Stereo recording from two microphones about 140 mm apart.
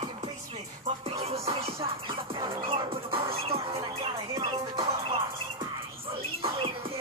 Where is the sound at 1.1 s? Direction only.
45° right (ahead or behind).